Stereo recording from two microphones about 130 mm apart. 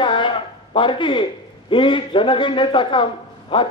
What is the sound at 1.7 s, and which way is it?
A man's voice, 40° left (ahead or behind).